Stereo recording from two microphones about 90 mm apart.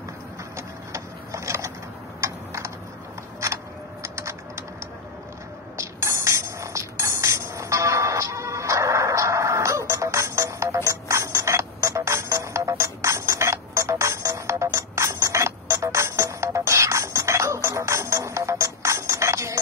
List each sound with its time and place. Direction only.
0.6 s printer: 35° right (ahead or behind)
2.2 s typing: 35° right (ahead or behind)
3.4 s a sound: 35° right (ahead or behind)
5.8 s music: 35° right (ahead or behind)